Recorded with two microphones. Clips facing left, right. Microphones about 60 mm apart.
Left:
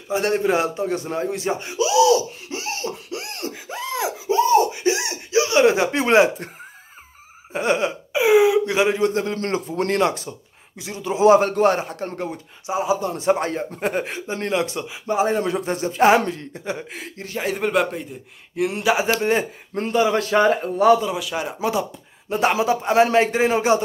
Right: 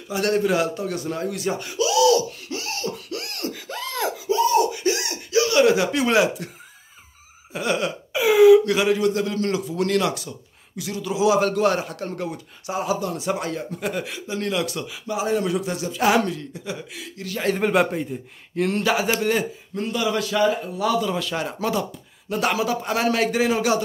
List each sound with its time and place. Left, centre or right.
0.1 s speech: left
3.6 s laughter: centre
4.3 s a sound: left
7.5 s a man's voice: left
13.1 s a man's voice: left
15.0 s a man's voice: left
17.4 s a man's voice: centre
18.6 s speech: centre
19.7 s a man's voice: left
21.0 s speech: centre
22.3 s speech: left